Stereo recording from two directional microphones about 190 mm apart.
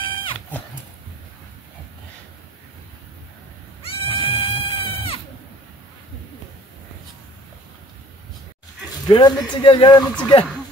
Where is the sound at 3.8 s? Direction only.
30° left (ahead or behind).